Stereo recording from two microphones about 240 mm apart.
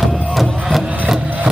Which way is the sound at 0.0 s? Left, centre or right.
Centre.